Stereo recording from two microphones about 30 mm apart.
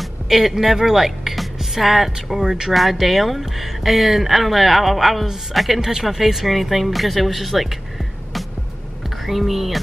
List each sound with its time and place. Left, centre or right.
0.3 s speech: centre
2.4 s speech: right
2.7 s speech: centre
5.8 s speech: centre
9.2 s speech: centre